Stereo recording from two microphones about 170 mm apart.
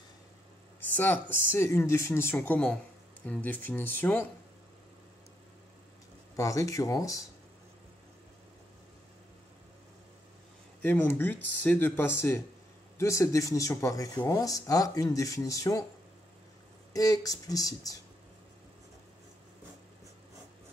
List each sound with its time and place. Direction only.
0.7 s speech: 10° left (ahead or behind)
6.3 s speech: 20° left (ahead or behind)
10.8 s speech: 10° left (ahead or behind)
16.9 s speech: 20° left (ahead or behind)